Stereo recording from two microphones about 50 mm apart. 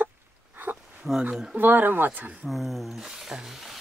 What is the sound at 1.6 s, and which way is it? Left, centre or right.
Speech, right.